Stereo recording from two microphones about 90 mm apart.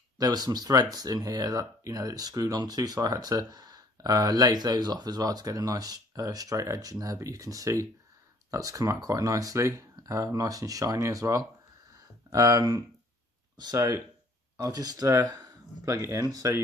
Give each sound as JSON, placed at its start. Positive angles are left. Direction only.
{"t": 0.2, "sound": "speech", "side_deg": -50}
{"t": 14.6, "sound": "speech", "side_deg": -45}